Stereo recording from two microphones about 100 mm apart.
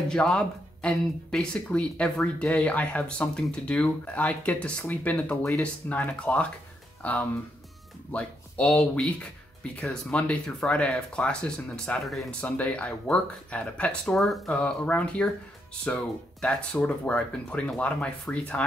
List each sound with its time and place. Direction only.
0.1 s speech: 10° left (ahead or behind)
5.3 s speech: 30° left (ahead or behind)
5.6 s speech: 15° left (ahead or behind)
12.4 s speech: 10° left (ahead or behind)
14.1 s speech: centre (ahead or behind)
14.5 s speech: 15° left (ahead or behind)